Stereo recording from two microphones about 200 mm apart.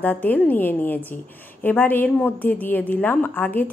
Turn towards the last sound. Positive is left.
turn(degrees=10)  # may be behind; listen again after turning